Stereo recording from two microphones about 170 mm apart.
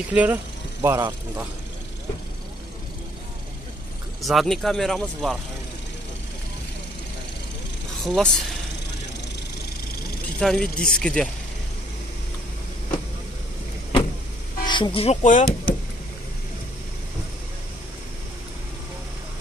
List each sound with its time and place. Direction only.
0.1 s speech: 10° right (ahead or behind)
4.2 s speech: centre (ahead or behind)
8.0 s speech: centre (ahead or behind)
10.4 s speech: 5° left (ahead or behind)
14.6 s speech: 25° left (ahead or behind)
15.2 s speech: 55° left (ahead or behind)